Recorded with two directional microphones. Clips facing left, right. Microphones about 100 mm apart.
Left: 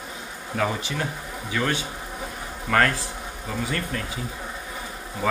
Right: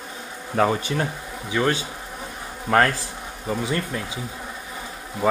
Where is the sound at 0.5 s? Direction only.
40° right (ahead or behind).